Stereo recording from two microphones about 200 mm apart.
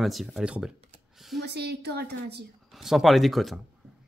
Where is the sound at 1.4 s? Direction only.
55° right (ahead or behind).